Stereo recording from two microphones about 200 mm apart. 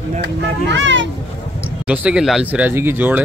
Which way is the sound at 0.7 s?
65° right (ahead or behind).